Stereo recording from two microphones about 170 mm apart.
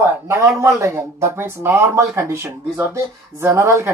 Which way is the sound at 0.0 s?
20° right (ahead or behind).